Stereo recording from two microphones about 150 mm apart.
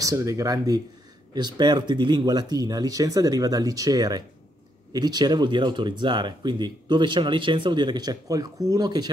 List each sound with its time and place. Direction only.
0.0 s speech: 20° right (ahead or behind)